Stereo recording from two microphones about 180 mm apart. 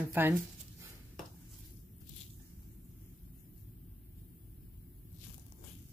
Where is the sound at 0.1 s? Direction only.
10° right (ahead or behind).